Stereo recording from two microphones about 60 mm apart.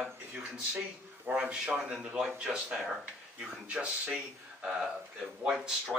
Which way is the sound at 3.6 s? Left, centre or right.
Centre.